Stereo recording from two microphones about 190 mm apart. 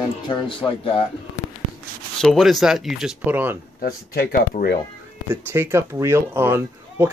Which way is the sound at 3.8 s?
50° left (ahead or behind).